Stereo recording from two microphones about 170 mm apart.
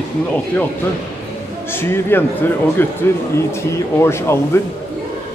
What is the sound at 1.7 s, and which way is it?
Speech, 15° left (ahead or behind).